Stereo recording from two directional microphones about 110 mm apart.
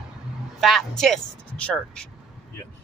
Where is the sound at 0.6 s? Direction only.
Centre (ahead or behind).